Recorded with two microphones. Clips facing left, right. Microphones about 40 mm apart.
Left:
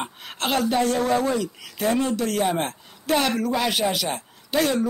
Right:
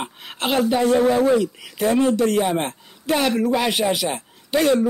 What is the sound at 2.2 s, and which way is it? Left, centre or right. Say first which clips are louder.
A man's voice: right 4 dB; centre.